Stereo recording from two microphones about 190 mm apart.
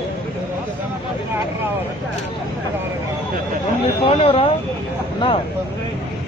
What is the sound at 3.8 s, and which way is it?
Speech, 30° left (ahead or behind).